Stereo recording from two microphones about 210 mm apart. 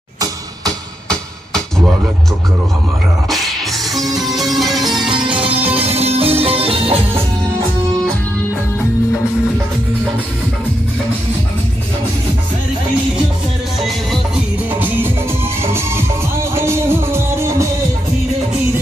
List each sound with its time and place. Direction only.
3.3 s music: centre (ahead or behind)
5.1 s music: 20° right (ahead or behind)
13.8 s music: 5° right (ahead or behind)
16.3 s music: 10° right (ahead or behind)